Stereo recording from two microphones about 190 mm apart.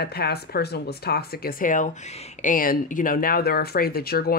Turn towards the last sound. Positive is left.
turn(degrees=55)  # may be behind; listen again after turning